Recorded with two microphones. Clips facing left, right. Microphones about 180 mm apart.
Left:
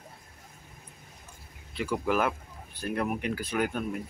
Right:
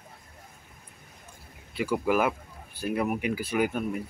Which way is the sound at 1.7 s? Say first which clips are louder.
Right 3 dB; 5° right (ahead or behind).